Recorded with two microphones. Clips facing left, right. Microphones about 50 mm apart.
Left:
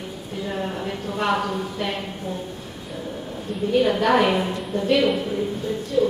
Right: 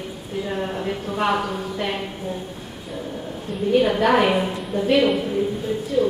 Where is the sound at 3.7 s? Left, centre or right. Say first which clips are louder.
Right 1 dB; centre.